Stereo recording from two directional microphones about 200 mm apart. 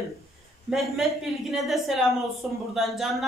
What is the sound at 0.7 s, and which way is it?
Speech, centre (ahead or behind).